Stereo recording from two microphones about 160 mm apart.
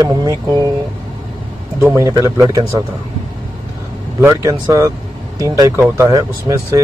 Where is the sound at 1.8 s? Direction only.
15° right (ahead or behind).